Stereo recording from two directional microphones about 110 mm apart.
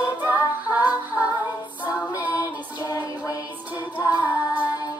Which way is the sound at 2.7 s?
35° left (ahead or behind).